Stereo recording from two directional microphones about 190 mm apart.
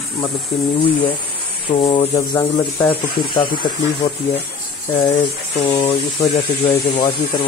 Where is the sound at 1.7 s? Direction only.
25° left (ahead or behind).